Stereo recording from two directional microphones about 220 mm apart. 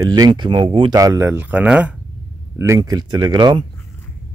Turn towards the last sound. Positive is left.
turn(degrees=-20)  # may be behind; listen again after turning